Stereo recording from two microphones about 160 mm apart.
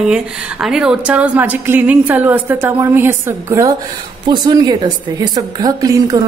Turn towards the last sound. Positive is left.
turn(degrees=-25)  # may be behind; listen again after turning